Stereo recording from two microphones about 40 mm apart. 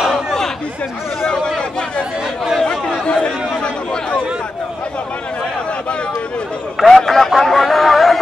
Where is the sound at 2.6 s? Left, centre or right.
Centre.